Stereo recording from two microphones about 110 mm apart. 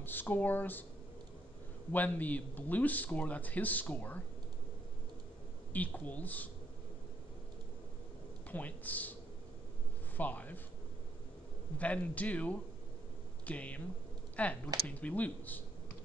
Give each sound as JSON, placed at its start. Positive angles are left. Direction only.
{"t": 0.0, "sound": "speech", "side_deg": 20}
{"t": 1.9, "sound": "speech", "side_deg": 15}
{"t": 5.7, "sound": "speech", "side_deg": 15}
{"t": 8.5, "sound": "speech", "side_deg": 15}
{"t": 10.1, "sound": "speech", "side_deg": 15}
{"t": 11.8, "sound": "speech", "side_deg": 15}